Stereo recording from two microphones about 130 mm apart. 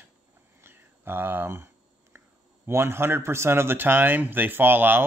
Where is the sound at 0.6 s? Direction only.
15° right (ahead or behind).